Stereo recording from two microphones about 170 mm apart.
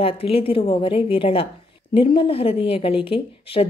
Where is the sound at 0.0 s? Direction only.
35° left (ahead or behind).